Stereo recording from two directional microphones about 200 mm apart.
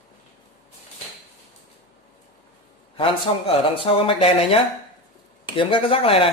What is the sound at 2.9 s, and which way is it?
Speech, 25° left (ahead or behind).